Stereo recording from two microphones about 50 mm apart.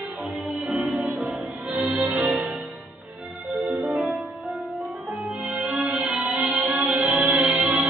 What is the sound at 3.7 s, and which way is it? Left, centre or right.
Music, right.